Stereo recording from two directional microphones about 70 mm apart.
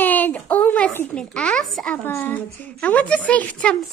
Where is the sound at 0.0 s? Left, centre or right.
Left.